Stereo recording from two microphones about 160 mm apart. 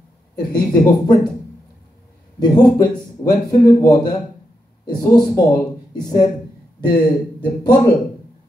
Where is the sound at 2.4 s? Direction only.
25° left (ahead or behind).